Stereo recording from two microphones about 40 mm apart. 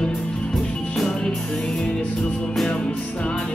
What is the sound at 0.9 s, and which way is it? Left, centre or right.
Music, centre.